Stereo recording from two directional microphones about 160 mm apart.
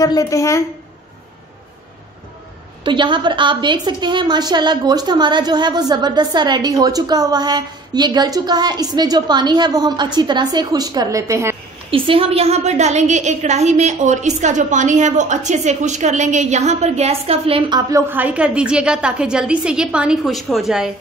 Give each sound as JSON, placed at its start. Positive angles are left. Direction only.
{"t": 0.0, "sound": "a woman's voice", "side_deg": 20}
{"t": 2.8, "sound": "a woman's voice", "side_deg": -30}
{"t": 11.9, "sound": "a woman's voice", "side_deg": -35}
{"t": 18.0, "sound": "a woman's voice", "side_deg": -10}